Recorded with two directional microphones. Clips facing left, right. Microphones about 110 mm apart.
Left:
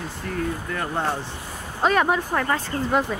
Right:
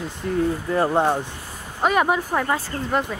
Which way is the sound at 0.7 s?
25° right (ahead or behind).